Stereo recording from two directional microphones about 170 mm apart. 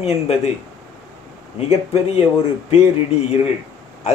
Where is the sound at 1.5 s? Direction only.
40° left (ahead or behind).